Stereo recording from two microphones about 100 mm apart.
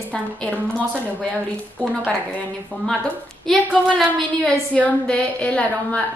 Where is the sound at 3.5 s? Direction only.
5° left (ahead or behind).